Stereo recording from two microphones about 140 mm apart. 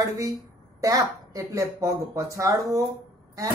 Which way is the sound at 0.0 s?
25° right (ahead or behind).